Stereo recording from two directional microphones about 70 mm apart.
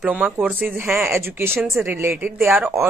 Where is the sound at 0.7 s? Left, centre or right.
Right.